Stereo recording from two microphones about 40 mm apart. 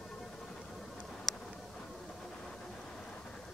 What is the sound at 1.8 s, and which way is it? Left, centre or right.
Vehicle, centre.